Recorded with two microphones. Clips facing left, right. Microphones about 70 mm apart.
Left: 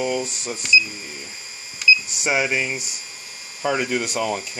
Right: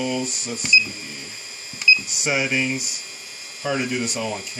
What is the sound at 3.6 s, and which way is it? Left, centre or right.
Speech, left.